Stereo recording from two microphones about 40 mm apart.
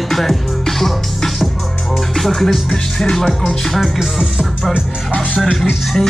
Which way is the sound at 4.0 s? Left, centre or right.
Centre.